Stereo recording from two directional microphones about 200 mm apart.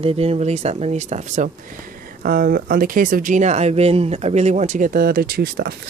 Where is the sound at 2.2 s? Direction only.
45° right (ahead or behind).